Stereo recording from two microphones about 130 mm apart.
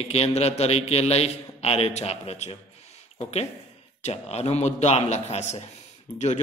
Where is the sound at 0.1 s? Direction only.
55° left (ahead or behind).